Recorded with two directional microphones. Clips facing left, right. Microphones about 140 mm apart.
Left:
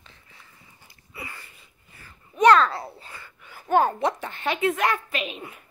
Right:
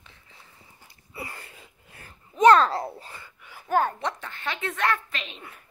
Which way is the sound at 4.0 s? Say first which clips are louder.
Left 6 dB; 20° left (ahead or behind).